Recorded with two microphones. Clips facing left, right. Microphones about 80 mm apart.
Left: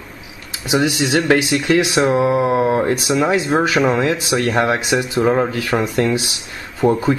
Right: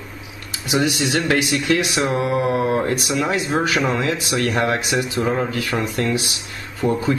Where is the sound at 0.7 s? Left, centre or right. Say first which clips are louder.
Left 3 dB; left.